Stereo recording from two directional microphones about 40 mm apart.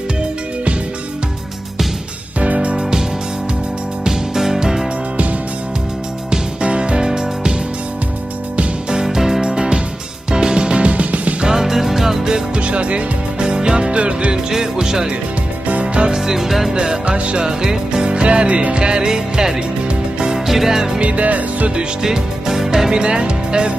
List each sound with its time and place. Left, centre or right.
2.4 s music: right
4.0 s music: centre
6.3 s music: right
8.9 s music: centre; by 11.3 s right
11.4 s music: centre
12.5 s music: right
13.4 s music: right
14.5 s speech: centre
15.8 s music: right
16.3 s music: centre
16.7 s music: centre
21.0 s music: right
21.7 s music: centre